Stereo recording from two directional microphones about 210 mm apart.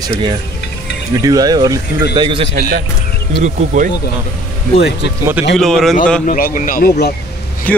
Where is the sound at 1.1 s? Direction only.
15° right (ahead or behind).